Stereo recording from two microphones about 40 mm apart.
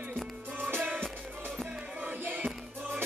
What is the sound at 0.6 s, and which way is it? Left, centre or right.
Music, right.